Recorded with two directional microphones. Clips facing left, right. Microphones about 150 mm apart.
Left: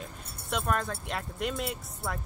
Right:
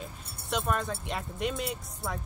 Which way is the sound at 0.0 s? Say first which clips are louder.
Even; centre (ahead or behind).